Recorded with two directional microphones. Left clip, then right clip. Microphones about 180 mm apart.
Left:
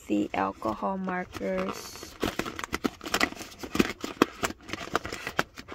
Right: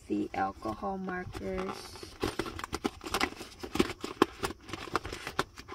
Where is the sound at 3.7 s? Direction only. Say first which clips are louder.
Left 3 dB; 40° left (ahead or behind).